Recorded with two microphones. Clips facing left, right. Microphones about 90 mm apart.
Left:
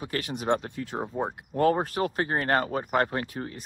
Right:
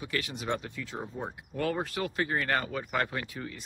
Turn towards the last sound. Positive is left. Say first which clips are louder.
# left 5 dB
turn(degrees=40)  # may be behind; listen again after turning